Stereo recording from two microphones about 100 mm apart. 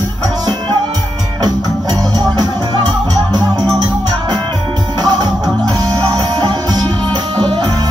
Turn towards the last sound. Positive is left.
turn(degrees=-45)  # may be behind; listen again after turning